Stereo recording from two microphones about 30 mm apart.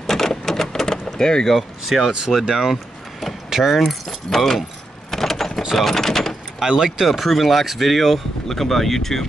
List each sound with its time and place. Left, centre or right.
0.0 s a sound: centre
1.0 s speech: left
1.9 s speech: centre
2.7 s vehicle: centre
3.4 s keys jangling: centre
3.8 s speech: centre
5.1 s vehicle: centre
5.8 s speech: centre
6.8 s speech: centre
7.2 s speech: centre